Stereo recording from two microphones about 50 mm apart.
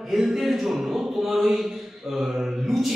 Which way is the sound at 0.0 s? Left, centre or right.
Centre.